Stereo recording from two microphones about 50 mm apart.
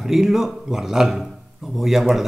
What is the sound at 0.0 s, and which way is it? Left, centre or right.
A man's voice, centre.